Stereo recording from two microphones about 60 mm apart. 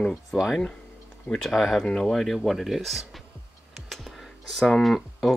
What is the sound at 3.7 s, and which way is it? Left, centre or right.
Computer keyboard, centre.